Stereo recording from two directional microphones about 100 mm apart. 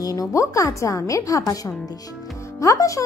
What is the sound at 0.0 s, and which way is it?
Speech, 35° left (ahead or behind).